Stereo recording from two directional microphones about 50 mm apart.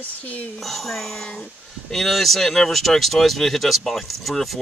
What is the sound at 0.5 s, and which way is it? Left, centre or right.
Speech, centre.